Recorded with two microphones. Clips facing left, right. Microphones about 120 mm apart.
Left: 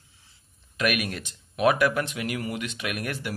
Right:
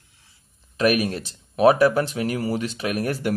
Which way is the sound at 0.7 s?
35° right (ahead or behind).